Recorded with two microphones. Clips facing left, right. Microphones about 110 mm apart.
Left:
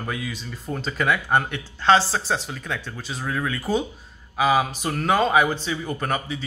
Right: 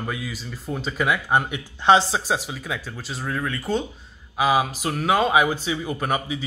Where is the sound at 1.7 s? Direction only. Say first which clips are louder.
Right 1 dB; 15° right (ahead or behind).